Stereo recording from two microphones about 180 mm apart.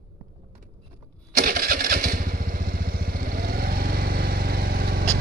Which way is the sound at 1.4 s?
50° right (ahead or behind).